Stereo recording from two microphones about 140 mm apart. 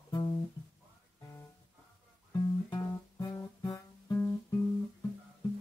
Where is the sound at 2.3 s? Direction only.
30° left (ahead or behind).